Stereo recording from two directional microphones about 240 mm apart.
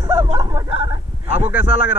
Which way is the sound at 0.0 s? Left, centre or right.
Right.